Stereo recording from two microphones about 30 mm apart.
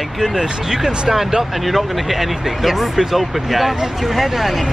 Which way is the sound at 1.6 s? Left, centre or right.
Centre.